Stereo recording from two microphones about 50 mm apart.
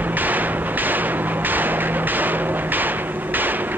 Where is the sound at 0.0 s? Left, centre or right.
Right.